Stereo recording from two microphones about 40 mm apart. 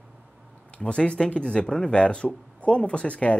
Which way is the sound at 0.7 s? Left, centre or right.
Left.